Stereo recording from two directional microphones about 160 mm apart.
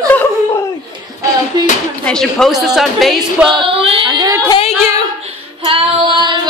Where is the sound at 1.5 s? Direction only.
25° right (ahead or behind).